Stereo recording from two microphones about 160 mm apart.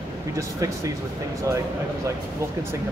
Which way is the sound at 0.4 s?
20° right (ahead or behind).